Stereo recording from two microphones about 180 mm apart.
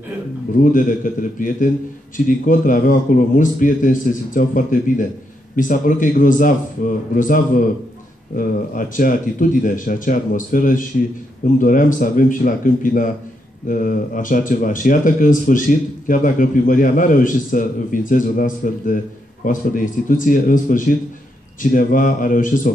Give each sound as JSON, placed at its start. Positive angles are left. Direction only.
{"t": 0.7, "sound": "a man's voice", "side_deg": 50}